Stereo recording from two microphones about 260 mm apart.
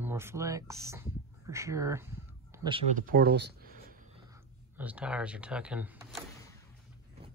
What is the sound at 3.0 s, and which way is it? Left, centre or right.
Speech, right.